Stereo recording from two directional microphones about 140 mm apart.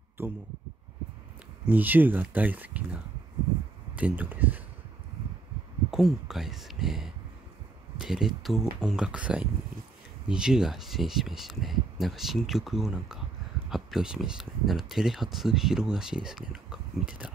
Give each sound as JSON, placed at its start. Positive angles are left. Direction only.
{"t": 0.2, "sound": "speech", "side_deg": -15}
{"t": 1.7, "sound": "speech", "side_deg": -15}
{"t": 5.9, "sound": "speech", "side_deg": 0}